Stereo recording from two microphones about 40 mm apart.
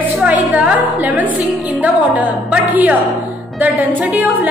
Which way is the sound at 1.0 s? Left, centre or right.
Right.